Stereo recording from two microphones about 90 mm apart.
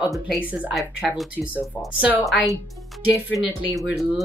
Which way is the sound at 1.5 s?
20° right (ahead or behind).